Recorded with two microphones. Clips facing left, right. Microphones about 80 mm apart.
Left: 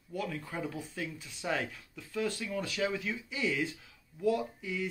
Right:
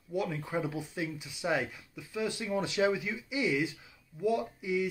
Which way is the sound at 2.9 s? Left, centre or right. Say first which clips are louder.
Right 3 dB; centre.